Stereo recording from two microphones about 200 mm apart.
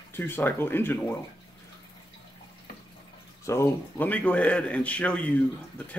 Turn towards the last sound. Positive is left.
turn(degrees=5)  # may be behind; listen again after turning